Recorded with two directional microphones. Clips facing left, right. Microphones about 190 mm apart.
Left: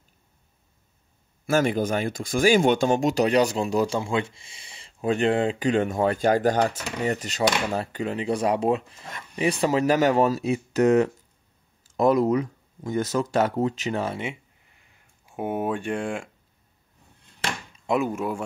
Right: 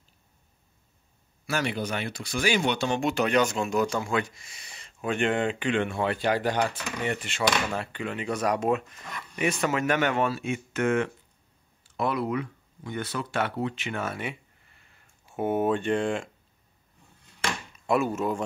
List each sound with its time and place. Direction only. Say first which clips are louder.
1.4 s speech: left 7 dB; 45° left (ahead or behind); by 14.3 s 25° left (ahead or behind)
15.2 s speech: right 2 dB; 10° left (ahead or behind)
17.7 s speech: left 1 dB; 20° left (ahead or behind)